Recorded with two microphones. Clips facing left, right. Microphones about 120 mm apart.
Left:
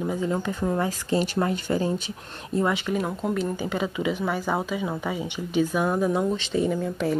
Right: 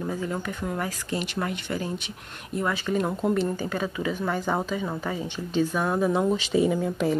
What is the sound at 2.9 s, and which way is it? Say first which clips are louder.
Speech: right 2 dB; centre (ahead or behind).